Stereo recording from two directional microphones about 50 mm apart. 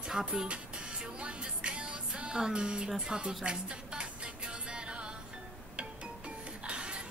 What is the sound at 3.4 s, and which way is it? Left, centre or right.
Music, centre.